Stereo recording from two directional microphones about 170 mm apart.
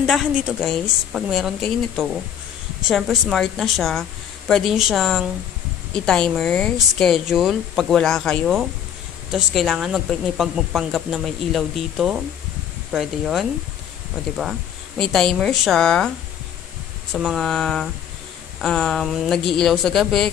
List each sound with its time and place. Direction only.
0.0 s speech: centre (ahead or behind)
17.1 s speech: centre (ahead or behind)